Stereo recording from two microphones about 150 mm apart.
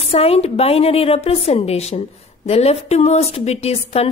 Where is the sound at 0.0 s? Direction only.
40° left (ahead or behind).